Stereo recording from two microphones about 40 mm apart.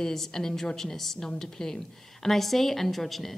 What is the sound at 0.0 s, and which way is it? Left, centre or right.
Speech, centre.